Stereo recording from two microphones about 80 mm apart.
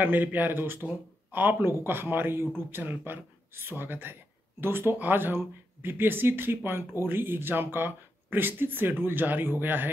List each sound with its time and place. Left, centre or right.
0.0 s speech: right